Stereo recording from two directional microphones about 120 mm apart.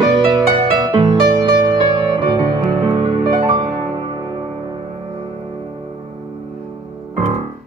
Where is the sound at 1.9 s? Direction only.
50° right (ahead or behind).